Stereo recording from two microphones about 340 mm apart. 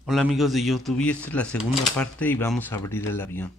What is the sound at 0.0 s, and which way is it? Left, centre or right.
Speech, centre.